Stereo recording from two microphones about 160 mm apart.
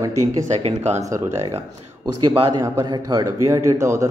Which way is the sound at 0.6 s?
40° right (ahead or behind).